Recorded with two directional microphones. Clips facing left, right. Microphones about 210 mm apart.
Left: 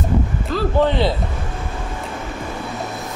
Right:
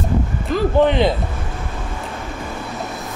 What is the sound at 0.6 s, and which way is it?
Speech, 15° right (ahead or behind).